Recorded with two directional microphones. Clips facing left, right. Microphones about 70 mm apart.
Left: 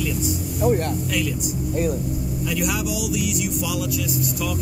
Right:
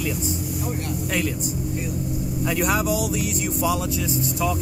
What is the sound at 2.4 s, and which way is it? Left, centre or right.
Speech, right.